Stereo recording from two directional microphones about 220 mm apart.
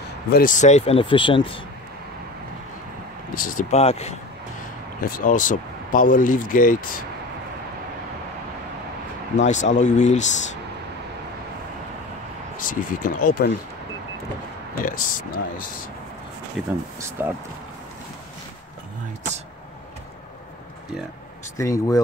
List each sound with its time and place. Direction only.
0.3 s speech: 40° left (ahead or behind)
3.3 s speech: 35° left (ahead or behind)
5.0 s speech: 40° left (ahead or behind)
9.4 s speech: 30° left (ahead or behind)
12.5 s speech: 40° left (ahead or behind)
14.8 s speech: 40° left (ahead or behind)
16.6 s speech: centre (ahead or behind)
21.5 s speech: 15° left (ahead or behind)